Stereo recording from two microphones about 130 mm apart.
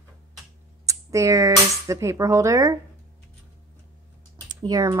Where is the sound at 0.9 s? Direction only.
25° right (ahead or behind).